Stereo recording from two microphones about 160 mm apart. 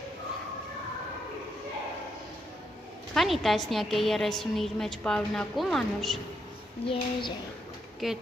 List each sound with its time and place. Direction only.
3.2 s a woman's voice: centre (ahead or behind)
6.9 s speech: 30° left (ahead or behind)
8.0 s a woman's voice: centre (ahead or behind)